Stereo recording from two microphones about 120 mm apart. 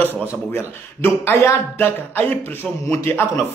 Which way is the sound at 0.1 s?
15° right (ahead or behind).